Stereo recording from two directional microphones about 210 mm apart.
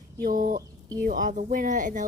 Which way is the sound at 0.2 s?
40° right (ahead or behind).